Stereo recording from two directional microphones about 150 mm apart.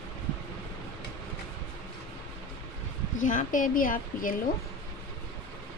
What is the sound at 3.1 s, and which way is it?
Speech, 60° left (ahead or behind).